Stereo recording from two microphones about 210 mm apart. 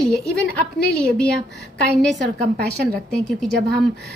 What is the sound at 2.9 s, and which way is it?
Speech, centre (ahead or behind).